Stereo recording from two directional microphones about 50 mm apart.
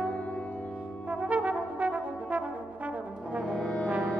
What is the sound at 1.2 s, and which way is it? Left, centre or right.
Brass instrument, right.